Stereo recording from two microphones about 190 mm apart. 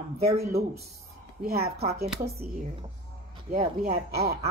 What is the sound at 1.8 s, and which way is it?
Speech, 35° right (ahead or behind).